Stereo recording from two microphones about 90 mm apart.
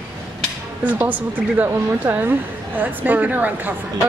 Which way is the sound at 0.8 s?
20° right (ahead or behind).